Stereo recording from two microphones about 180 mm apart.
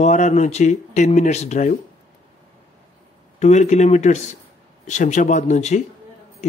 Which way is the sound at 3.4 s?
40° left (ahead or behind).